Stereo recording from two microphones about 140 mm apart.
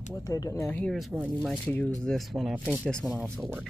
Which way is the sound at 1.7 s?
10° left (ahead or behind).